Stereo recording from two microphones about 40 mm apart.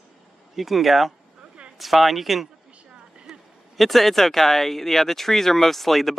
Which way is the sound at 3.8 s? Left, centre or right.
Centre.